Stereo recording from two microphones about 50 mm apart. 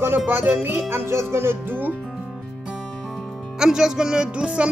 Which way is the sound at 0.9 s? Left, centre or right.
Right.